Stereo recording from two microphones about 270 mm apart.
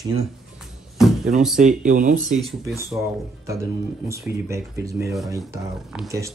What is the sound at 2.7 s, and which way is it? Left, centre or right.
Speech, centre.